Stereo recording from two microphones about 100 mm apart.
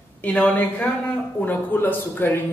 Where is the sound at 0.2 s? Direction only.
15° left (ahead or behind).